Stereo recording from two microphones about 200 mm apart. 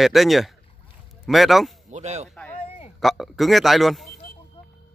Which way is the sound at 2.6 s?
30° left (ahead or behind).